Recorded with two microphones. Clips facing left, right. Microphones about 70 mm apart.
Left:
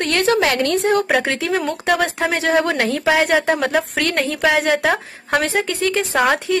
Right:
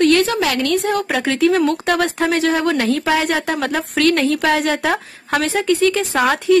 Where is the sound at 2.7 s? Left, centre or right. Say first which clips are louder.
Even; left.